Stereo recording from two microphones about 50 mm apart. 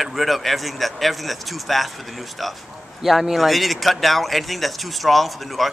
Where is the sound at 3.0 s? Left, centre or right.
Centre.